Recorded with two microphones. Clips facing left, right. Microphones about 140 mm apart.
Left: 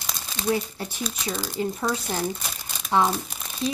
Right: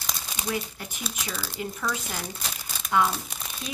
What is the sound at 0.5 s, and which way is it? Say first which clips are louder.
A woman's voice: left 7 dB; 35° left (ahead or behind).